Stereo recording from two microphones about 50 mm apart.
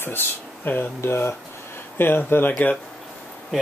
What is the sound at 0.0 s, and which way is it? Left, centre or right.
Speech, left.